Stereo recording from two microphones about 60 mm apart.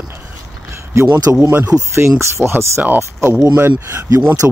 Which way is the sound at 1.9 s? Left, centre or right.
Right.